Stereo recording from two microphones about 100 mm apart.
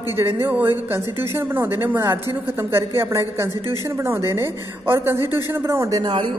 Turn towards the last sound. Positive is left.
turn(degrees=-30)  # may be behind; listen again after turning